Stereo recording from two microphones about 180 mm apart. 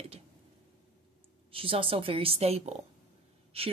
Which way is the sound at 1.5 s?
30° right (ahead or behind).